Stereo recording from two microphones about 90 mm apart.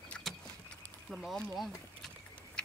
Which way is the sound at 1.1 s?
Centre (ahead or behind).